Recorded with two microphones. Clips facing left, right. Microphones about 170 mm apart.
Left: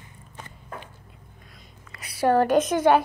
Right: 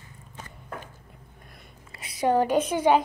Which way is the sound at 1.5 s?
60° right (ahead or behind).